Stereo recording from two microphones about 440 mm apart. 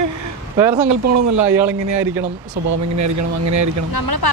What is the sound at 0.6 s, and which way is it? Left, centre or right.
Speech, centre.